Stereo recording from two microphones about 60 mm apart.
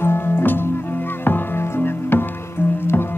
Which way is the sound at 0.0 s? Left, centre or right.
Left.